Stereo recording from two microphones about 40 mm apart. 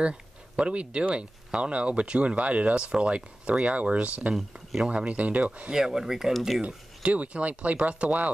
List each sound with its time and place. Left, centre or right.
0.6 s speech: right
5.7 s speech: centre
6.3 s speech: centre
7.0 s speech: right